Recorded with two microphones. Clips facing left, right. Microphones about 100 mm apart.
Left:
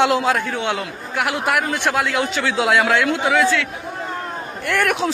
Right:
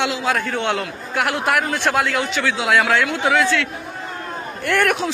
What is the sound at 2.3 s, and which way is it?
Speech, 30° left (ahead or behind).